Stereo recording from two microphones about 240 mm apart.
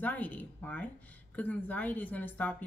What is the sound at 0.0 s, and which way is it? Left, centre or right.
Speech, centre.